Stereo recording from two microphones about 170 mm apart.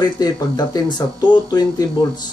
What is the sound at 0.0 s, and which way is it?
Speech, 25° left (ahead or behind).